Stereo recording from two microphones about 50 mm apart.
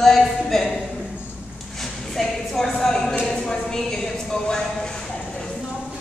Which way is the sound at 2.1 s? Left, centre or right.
Centre.